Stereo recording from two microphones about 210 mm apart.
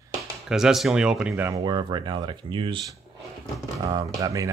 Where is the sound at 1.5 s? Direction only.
20° right (ahead or behind).